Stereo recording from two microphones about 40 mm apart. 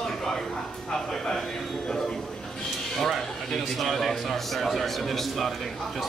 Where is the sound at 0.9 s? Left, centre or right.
Centre.